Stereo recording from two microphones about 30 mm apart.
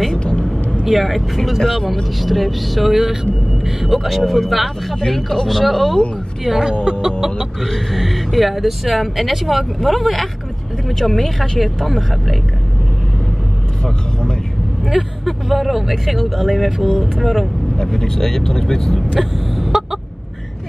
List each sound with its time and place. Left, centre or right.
0.1 s vehicle: left
0.8 s speech: centre
5.0 s speech: centre
5.5 s speech: centre
6.6 s speech: right
7.3 s speech: centre
14.9 s speech: centre
17.9 s speech: centre
19.1 s vehicle: centre